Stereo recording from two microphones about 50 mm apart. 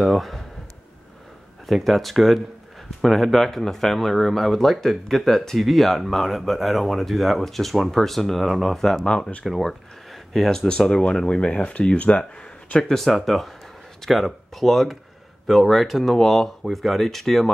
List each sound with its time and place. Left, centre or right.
0.0 s speech: centre
1.7 s speech: centre
9.0 s speech: left
9.5 s speech: centre
10.9 s speech: centre
12.8 s speech: centre